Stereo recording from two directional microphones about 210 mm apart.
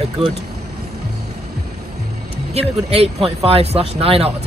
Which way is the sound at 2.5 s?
30° right (ahead or behind).